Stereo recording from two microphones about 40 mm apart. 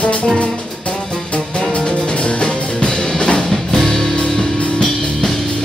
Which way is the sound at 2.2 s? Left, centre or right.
Left.